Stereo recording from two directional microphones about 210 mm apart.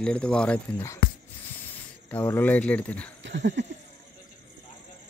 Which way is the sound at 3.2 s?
60° right (ahead or behind).